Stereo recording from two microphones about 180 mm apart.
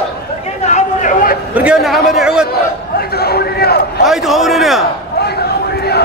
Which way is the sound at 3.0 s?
60° left (ahead or behind).